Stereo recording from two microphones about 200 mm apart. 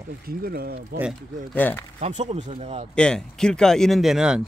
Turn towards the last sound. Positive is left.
turn(degrees=-5)  # may be behind; listen again after turning